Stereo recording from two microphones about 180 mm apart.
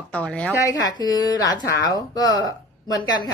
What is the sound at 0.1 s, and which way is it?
Speech, 5° left (ahead or behind).